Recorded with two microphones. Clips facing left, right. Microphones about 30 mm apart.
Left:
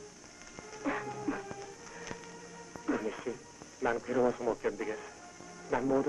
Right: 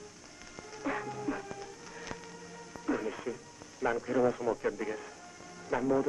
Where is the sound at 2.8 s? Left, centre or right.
Centre.